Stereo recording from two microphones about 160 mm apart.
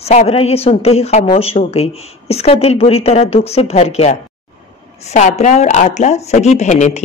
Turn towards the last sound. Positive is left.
turn(degrees=45)  # may be behind; listen again after turning